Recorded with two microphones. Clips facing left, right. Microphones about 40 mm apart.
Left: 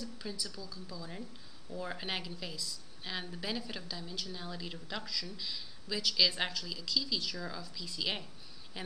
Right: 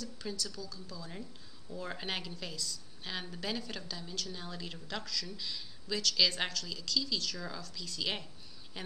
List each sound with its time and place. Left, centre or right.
0.4 s speech: centre
0.9 s a woman's voice: centre
7.6 s a woman's voice: centre